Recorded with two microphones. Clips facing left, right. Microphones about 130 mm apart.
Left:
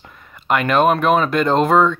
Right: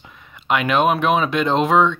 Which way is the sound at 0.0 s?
Centre (ahead or behind).